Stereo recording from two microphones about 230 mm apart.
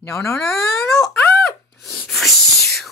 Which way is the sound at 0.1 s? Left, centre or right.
Centre.